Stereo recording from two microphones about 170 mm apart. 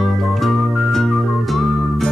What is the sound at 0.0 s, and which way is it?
Music, centre (ahead or behind).